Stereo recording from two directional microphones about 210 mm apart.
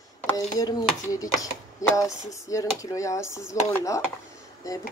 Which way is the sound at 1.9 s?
15° left (ahead or behind).